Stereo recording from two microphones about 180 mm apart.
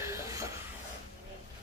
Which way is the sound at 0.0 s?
15° right (ahead or behind).